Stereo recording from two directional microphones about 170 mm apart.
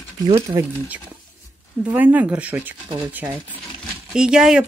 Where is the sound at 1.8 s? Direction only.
10° right (ahead or behind).